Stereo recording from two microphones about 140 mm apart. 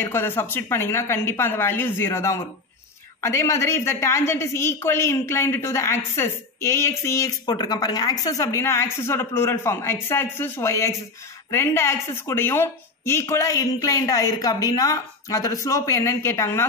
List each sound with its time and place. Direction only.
0.0 s a woman's voice: 15° left (ahead or behind)